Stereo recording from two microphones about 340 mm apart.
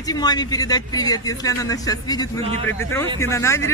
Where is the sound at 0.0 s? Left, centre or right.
Centre.